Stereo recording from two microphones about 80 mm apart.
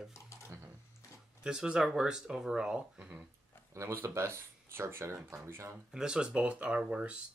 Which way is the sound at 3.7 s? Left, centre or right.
Right.